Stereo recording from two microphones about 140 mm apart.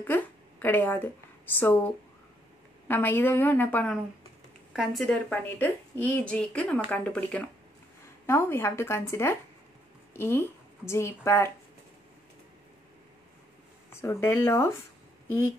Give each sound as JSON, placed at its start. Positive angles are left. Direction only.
{"t": 0.0, "sound": "speech", "side_deg": 15}
{"t": 2.9, "sound": "a woman's voice", "side_deg": 15}
{"t": 4.7, "sound": "a woman's voice", "side_deg": 0}
{"t": 13.9, "sound": "a woman's voice", "side_deg": 20}